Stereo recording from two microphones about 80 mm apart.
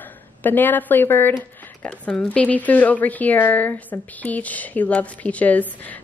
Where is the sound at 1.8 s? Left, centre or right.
Centre.